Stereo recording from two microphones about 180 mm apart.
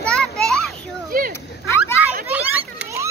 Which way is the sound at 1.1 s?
50° right (ahead or behind).